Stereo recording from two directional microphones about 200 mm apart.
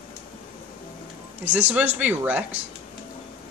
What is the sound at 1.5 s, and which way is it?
Speech, 10° right (ahead or behind).